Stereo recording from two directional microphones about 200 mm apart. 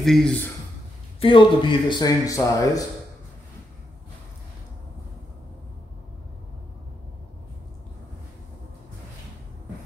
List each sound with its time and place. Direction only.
0.0 s speech: centre (ahead or behind)
1.2 s speech: 25° left (ahead or behind)